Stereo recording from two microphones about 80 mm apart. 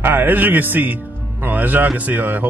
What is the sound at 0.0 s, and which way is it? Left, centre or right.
A man's voice, right.